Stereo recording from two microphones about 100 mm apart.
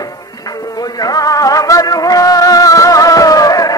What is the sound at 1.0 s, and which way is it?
Music, 40° left (ahead or behind).